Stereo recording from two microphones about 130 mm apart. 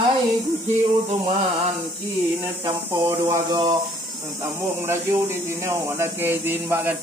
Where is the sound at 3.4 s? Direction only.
35° right (ahead or behind).